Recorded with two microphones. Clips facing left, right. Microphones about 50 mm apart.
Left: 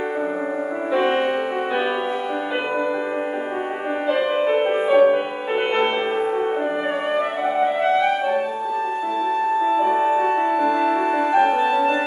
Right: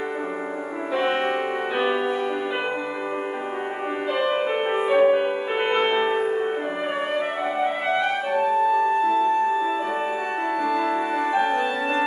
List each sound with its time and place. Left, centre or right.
0.9 s music: centre
4.1 s music: centre
7.5 s music: centre